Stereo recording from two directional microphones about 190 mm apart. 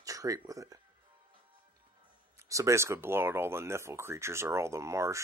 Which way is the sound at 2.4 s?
15° right (ahead or behind).